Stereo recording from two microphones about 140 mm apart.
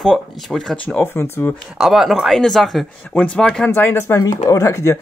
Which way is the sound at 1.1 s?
15° left (ahead or behind).